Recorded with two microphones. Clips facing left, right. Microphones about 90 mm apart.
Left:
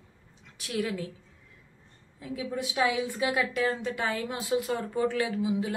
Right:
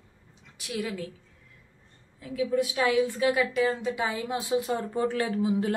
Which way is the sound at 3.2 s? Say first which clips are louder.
Right 3 dB; centre (ahead or behind).